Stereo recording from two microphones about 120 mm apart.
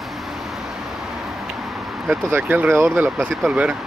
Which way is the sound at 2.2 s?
15° right (ahead or behind).